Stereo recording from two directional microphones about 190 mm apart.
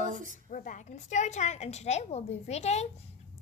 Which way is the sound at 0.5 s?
40° left (ahead or behind).